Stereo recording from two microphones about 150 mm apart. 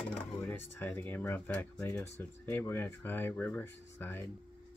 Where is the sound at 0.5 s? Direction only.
10° left (ahead or behind).